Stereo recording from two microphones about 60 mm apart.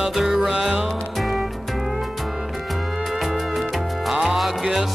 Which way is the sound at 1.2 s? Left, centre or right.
Centre.